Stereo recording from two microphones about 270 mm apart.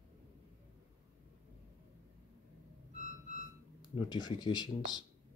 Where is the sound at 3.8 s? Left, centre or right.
Centre.